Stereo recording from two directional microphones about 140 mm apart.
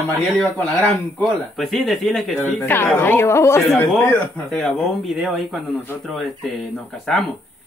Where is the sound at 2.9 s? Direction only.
15° left (ahead or behind).